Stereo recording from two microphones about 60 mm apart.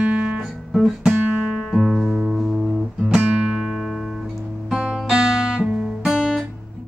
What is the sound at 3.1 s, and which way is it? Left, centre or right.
Music, centre.